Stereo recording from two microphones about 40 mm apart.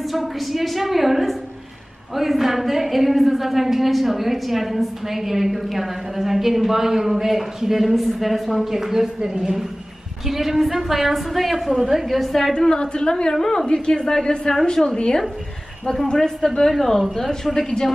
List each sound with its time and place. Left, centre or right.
0.1 s a woman's voice: centre
12.5 s a woman's voice: centre
13.3 s a woman's voice: centre
16.1 s speech: centre